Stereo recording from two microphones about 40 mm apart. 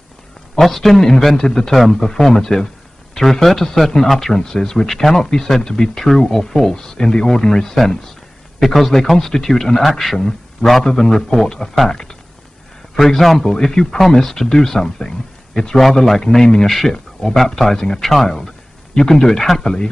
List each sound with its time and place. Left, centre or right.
0.6 s a man's voice: centre
10.8 s speech: centre
12.9 s a man's voice: centre
13.4 s a man's voice: centre